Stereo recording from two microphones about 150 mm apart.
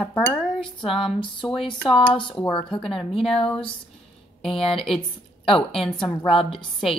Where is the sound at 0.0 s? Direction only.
15° left (ahead or behind).